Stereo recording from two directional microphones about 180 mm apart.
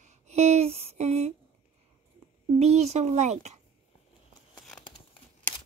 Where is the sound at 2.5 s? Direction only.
35° right (ahead or behind).